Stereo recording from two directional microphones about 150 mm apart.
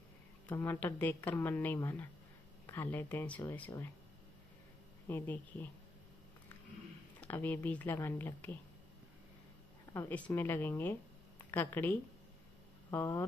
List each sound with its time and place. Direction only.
0.5 s speech: 15° left (ahead or behind)
5.0 s speech: 10° left (ahead or behind)
7.2 s speech: 10° left (ahead or behind)
9.9 s speech: 10° left (ahead or behind)